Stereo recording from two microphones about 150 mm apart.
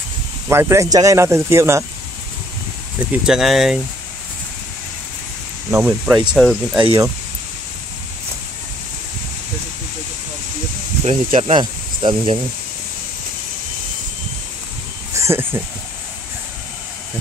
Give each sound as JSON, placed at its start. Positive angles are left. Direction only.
{"t": 0.5, "sound": "speech", "side_deg": -20}
{"t": 3.1, "sound": "speech", "side_deg": -5}
{"t": 5.7, "sound": "speech", "side_deg": -10}
{"t": 6.3, "sound": "speech", "side_deg": 0}
{"t": 11.1, "sound": "speech", "side_deg": -40}
{"t": 15.1, "sound": "speech", "side_deg": -15}